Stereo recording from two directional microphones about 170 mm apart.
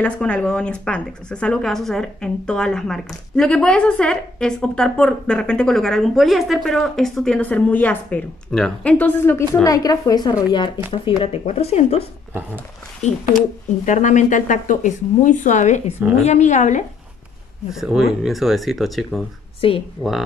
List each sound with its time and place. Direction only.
0.0 s a woman's voice: 5° left (ahead or behind); by 16.8 s 45° left (ahead or behind)
17.6 s a woman's voice: 5° right (ahead or behind)
19.6 s speech: 30° left (ahead or behind)
20.0 s a woman's voice: centre (ahead or behind)